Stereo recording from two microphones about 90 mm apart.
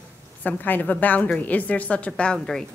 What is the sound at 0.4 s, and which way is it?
A woman's voice, 20° left (ahead or behind).